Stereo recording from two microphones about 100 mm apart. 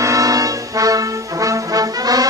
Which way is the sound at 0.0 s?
35° right (ahead or behind).